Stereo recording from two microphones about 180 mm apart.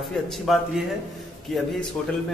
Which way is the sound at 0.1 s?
Centre (ahead or behind).